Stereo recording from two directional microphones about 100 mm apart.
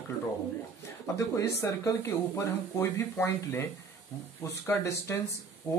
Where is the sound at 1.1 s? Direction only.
30° left (ahead or behind).